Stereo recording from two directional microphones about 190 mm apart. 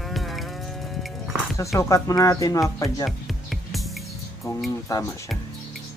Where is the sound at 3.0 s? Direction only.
Centre (ahead or behind).